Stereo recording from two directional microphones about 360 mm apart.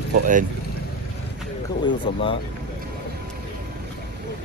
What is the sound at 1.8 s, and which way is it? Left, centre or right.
Speech, centre.